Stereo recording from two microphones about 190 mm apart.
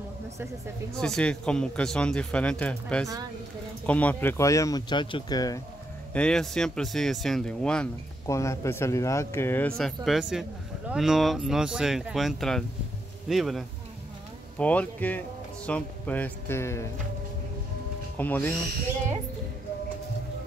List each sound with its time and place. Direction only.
0.9 s speech: 5° left (ahead or behind); by 5.6 s 20° left (ahead or behind)
6.1 s speech: 5° left (ahead or behind)
8.3 s speech: 15° left (ahead or behind)
18.1 s speech: 10° left (ahead or behind)